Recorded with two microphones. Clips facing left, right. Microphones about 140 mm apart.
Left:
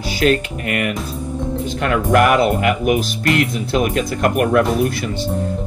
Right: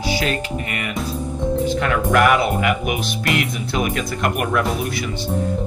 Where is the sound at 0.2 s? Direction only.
60° left (ahead or behind).